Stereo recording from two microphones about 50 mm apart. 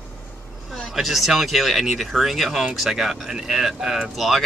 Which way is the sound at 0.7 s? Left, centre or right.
Centre.